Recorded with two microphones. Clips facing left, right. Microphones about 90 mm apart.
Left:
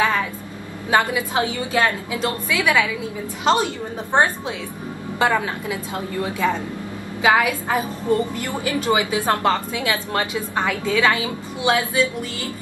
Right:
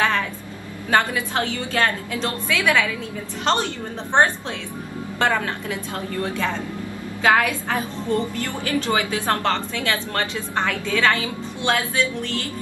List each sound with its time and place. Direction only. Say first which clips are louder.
0.8 s a woman's voice: left 1 dB; 15° left (ahead or behind)